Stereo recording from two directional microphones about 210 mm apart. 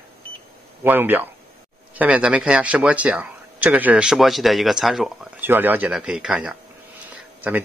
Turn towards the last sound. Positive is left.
turn(degrees=-10)  # may be behind; listen again after turning